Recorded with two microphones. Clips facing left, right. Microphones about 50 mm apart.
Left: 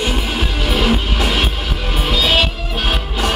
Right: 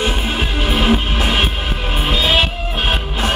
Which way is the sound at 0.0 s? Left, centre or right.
Right.